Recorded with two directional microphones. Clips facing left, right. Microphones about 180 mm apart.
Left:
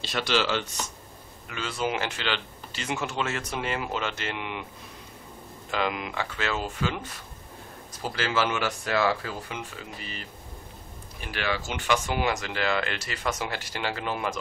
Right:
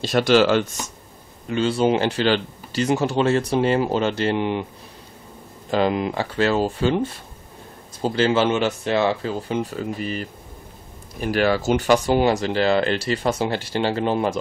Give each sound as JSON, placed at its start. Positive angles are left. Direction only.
{"t": 0.0, "sound": "speech", "side_deg": -45}
{"t": 1.5, "sound": "speech", "side_deg": -30}
{"t": 5.7, "sound": "speech", "side_deg": -35}